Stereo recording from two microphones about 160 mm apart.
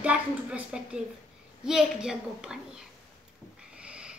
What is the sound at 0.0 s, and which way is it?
A woman's voice, 10° right (ahead or behind).